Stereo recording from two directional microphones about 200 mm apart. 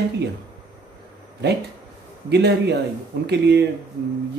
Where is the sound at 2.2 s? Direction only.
55° right (ahead or behind).